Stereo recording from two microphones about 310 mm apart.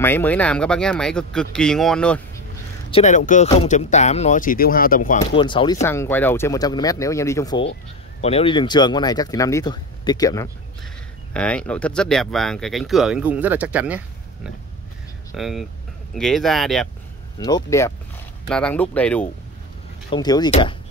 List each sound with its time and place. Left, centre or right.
0.0 s speech: centre
2.9 s speech: left; by 14.0 s centre
15.3 s speech: centre
17.4 s speech: centre